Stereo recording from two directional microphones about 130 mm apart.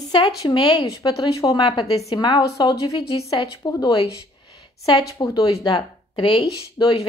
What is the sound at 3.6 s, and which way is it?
Speech, 30° left (ahead or behind).